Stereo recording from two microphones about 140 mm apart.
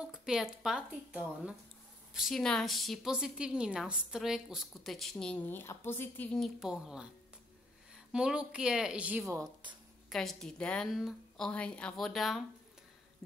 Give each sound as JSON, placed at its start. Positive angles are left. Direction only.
{"t": 0.0, "sound": "a woman's voice", "side_deg": -5}
{"t": 6.4, "sound": "a woman's voice", "side_deg": -5}
{"t": 8.1, "sound": "speech", "side_deg": -5}
{"t": 9.3, "sound": "speech", "side_deg": -30}
{"t": 10.0, "sound": "a woman's voice", "side_deg": 0}